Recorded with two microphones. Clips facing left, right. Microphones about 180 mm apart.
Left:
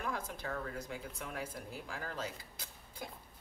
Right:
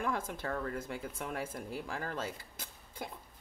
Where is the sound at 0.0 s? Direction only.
50° right (ahead or behind).